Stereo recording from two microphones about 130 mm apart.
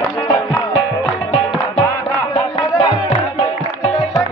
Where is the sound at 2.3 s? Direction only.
45° left (ahead or behind).